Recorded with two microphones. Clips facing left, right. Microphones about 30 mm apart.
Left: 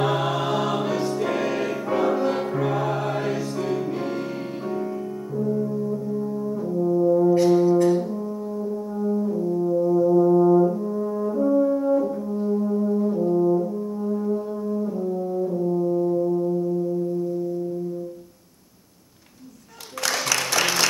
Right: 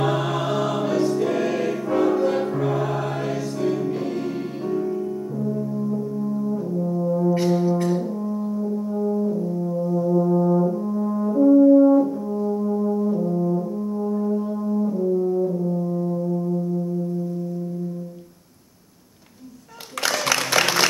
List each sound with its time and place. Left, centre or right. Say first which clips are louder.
0.0 s music: even; centre
5.4 s brass instrument: left 3 dB; centre
11.8 s french horn: right 6 dB; centre
12.4 s brass instrument: left 1 dB; centre
14.4 s brass instrument: right 3 dB; centre
15.5 s brass instrument: left 2 dB; centre
20.4 s music: right 3 dB; right